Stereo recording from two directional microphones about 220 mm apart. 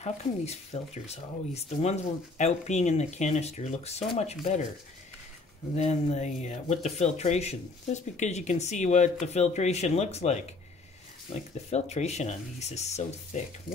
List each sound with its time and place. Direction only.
0.0 s speech: 30° left (ahead or behind)
5.8 s speech: 30° left (ahead or behind)